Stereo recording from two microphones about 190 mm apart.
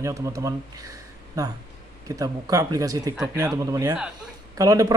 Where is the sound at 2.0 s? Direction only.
20° right (ahead or behind).